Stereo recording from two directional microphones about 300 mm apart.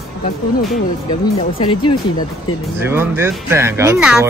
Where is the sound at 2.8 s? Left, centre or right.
Centre.